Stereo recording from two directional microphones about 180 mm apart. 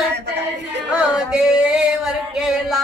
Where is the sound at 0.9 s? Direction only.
5° right (ahead or behind).